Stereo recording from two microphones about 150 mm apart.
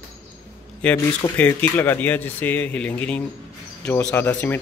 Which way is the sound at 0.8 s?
5° left (ahead or behind).